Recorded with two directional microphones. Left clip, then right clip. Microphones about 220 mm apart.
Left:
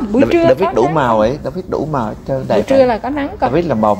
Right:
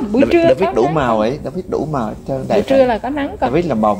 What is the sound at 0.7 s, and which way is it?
Speech, 15° left (ahead or behind).